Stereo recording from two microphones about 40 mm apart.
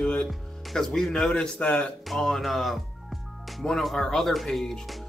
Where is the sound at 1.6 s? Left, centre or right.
Left.